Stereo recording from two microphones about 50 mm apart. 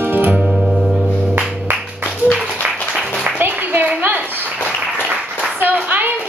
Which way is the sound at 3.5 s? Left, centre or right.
Right.